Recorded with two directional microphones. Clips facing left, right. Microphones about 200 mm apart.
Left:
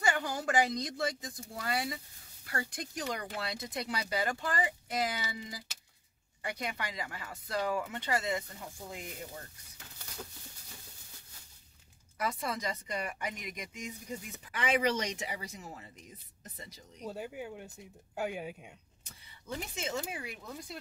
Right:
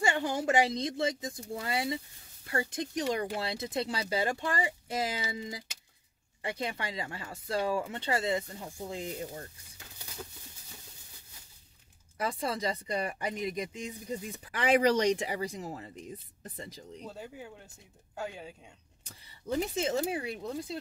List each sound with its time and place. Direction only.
0.0 s speech: 25° right (ahead or behind)
12.2 s speech: 30° right (ahead or behind)
17.0 s speech: 15° left (ahead or behind)
19.0 s speech: 35° right (ahead or behind)